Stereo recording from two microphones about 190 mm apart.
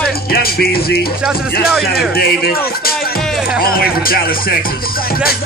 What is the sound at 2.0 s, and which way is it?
Speech, 55° left (ahead or behind).